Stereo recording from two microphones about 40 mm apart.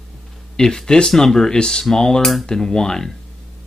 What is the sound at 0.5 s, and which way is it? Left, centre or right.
Speech, centre.